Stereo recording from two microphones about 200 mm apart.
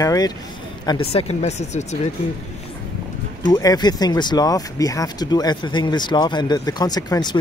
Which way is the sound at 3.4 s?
20° left (ahead or behind).